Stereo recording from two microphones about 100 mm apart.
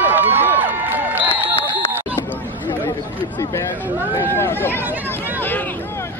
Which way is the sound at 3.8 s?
20° right (ahead or behind).